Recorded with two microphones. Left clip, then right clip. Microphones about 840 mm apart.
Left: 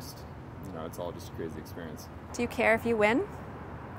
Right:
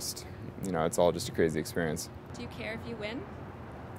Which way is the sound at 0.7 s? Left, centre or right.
Right.